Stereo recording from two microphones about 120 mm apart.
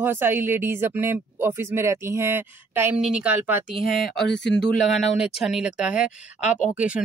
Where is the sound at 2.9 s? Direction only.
10° right (ahead or behind).